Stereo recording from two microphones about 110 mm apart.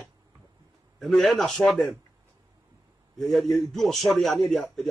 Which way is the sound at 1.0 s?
Centre (ahead or behind).